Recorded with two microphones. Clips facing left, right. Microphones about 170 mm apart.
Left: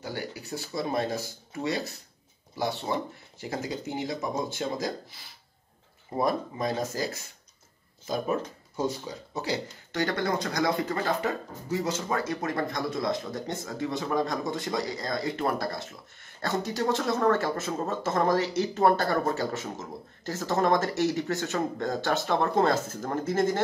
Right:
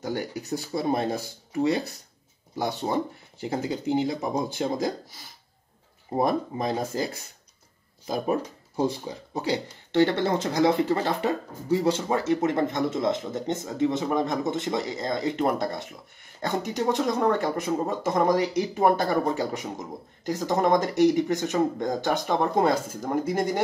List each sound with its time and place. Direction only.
0.0 s speech: 40° right (ahead or behind)
2.6 s speech: 40° right (ahead or behind)
6.2 s speech: 30° right (ahead or behind)
8.7 s speech: 30° right (ahead or behind); by 23.6 s 15° right (ahead or behind)